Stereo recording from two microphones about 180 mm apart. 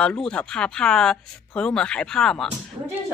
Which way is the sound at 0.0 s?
5° left (ahead or behind).